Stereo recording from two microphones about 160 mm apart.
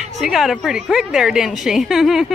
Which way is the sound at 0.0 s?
Centre (ahead or behind).